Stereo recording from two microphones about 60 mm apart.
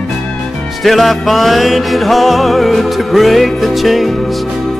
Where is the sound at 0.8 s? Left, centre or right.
Centre.